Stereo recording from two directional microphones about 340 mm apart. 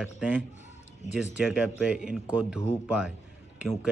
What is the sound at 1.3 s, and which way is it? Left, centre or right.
Speech, centre.